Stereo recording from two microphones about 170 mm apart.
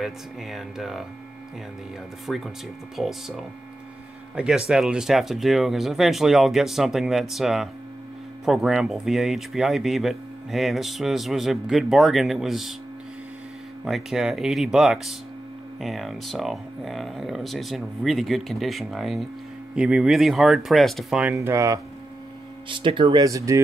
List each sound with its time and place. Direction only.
0.0 s speech: centre (ahead or behind)
2.2 s speech: centre (ahead or behind)
13.8 s speech: centre (ahead or behind)
21.4 s speech: 20° right (ahead or behind)
22.7 s speech: 30° right (ahead or behind)